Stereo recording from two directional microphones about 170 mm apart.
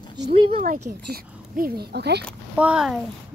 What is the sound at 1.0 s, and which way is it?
Speech, 65° right (ahead or behind).